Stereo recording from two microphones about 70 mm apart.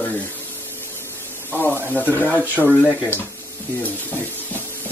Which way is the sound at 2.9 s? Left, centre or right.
Left.